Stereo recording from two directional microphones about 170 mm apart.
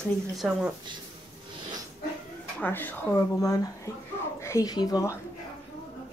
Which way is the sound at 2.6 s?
10° left (ahead or behind).